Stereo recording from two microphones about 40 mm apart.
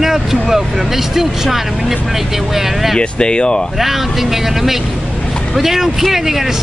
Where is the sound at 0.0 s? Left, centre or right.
Centre.